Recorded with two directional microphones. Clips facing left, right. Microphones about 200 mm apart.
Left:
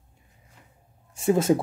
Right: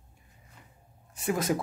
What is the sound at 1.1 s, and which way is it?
Speech, 25° left (ahead or behind).